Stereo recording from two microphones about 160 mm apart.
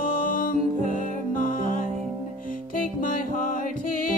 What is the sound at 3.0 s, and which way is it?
Music, 60° left (ahead or behind).